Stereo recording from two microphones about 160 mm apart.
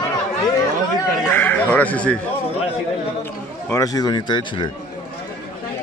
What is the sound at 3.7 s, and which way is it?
Speech, 20° left (ahead or behind).